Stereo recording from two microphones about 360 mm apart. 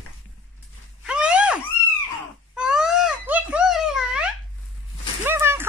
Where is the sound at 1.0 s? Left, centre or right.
Centre.